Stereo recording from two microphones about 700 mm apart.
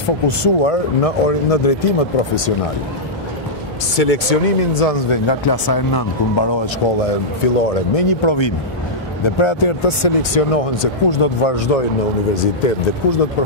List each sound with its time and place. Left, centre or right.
0.4 s speech: left
3.9 s speech: left
5.1 s speech: left
7.0 s speech: left
12.4 s speech: left